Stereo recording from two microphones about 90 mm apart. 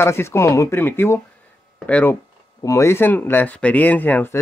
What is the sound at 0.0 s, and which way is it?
Speech, 25° left (ahead or behind).